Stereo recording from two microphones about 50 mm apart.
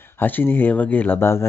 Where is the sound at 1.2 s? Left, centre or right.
Left.